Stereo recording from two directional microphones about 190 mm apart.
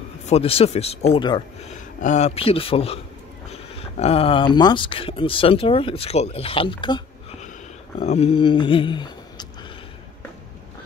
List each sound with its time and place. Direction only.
0.3 s speech: 30° left (ahead or behind)
1.6 s speech: 40° left (ahead or behind)
8.0 s speech: 35° left (ahead or behind)